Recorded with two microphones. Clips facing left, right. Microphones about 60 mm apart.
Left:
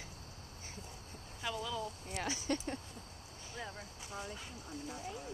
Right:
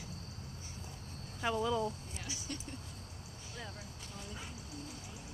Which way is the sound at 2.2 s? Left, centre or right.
Left.